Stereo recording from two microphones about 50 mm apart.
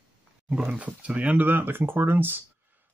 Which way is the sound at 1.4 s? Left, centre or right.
Right.